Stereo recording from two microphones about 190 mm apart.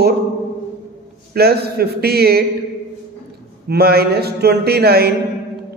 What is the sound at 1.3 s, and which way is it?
A man's voice, 55° right (ahead or behind).